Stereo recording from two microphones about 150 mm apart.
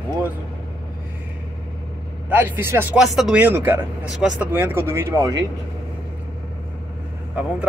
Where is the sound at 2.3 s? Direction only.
15° right (ahead or behind).